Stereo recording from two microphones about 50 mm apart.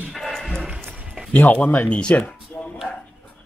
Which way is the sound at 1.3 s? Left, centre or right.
Left.